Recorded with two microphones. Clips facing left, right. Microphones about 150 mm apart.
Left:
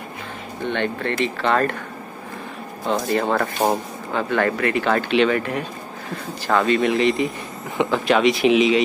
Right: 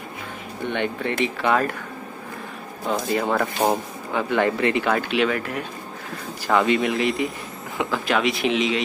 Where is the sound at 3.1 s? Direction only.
Centre (ahead or behind).